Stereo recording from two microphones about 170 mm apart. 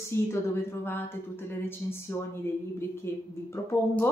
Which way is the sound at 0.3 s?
15° left (ahead or behind).